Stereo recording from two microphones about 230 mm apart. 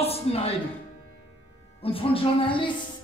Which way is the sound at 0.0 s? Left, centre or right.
Left.